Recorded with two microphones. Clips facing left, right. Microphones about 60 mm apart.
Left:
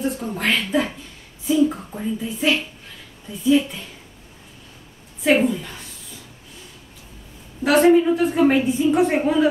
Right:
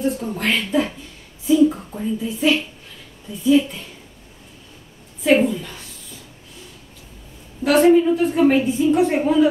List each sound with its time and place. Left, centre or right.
0.0 s a woman's voice: centre
1.7 s a sound: centre
2.1 s a woman's voice: centre
5.2 s a woman's voice: centre
7.6 s a woman's voice: centre